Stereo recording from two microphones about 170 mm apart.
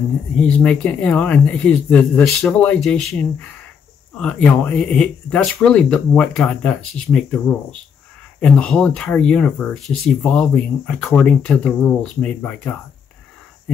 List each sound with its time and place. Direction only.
0.4 s speech: 5° left (ahead or behind)